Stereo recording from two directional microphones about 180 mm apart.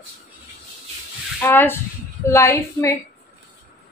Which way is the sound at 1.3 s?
10° left (ahead or behind).